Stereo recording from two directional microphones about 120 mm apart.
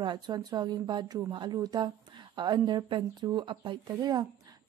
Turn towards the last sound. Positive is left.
turn(degrees=-30)  # may be behind; listen again after turning